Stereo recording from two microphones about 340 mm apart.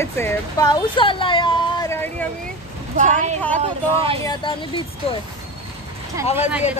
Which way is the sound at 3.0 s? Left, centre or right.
Right.